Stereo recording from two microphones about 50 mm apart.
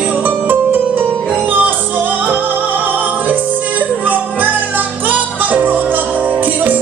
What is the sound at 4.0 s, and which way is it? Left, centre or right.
Music, right.